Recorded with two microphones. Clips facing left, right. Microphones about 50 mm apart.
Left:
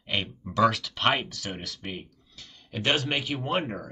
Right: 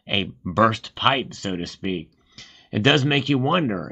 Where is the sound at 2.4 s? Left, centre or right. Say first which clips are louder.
Right 10 dB; right.